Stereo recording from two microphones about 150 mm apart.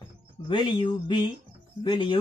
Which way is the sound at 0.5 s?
35° left (ahead or behind).